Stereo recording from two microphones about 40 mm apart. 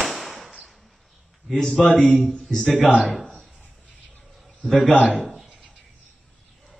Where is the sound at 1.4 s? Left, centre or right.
Centre.